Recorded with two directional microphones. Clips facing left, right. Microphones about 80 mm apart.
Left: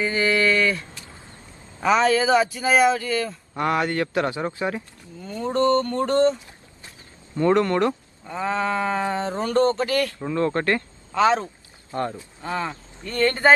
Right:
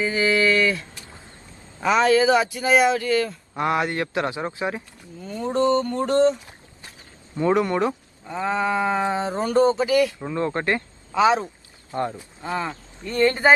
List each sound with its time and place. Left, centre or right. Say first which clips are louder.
0.0 s a sound: right 1 dB; centre
1.8 s speech: right 1 dB; centre
3.5 s speech: even; centre
7.3 s speech: left 1 dB; centre